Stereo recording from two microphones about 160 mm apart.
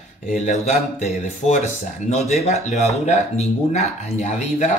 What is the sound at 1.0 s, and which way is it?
Speech, 40° left (ahead or behind).